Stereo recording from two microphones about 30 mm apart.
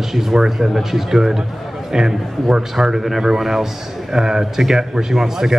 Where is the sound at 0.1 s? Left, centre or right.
Centre.